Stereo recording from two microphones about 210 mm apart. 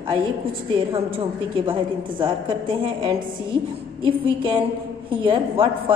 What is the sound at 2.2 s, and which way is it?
A woman's voice, 25° right (ahead or behind).